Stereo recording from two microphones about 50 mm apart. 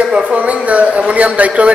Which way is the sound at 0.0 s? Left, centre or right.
Right.